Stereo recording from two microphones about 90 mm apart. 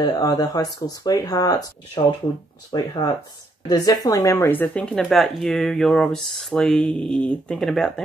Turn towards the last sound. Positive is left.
turn(degrees=0)  # may be behind; listen again after turning